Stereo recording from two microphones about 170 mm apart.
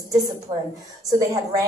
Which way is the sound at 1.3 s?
20° right (ahead or behind).